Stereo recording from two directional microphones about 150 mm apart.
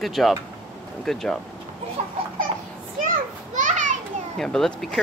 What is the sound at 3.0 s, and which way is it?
Children playing, 55° right (ahead or behind).